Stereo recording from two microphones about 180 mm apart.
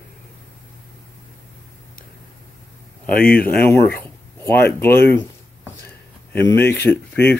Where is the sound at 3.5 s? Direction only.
10° left (ahead or behind).